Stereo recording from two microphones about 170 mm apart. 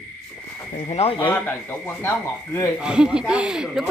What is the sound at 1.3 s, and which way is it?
A man's voice, 10° left (ahead or behind).